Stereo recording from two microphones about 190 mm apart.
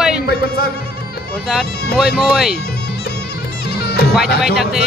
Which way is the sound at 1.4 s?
Centre (ahead or behind).